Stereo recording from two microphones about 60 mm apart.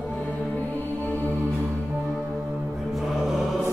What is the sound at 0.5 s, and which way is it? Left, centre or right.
Music, left.